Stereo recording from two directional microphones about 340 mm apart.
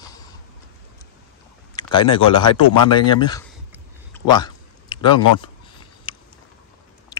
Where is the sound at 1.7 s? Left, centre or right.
Centre.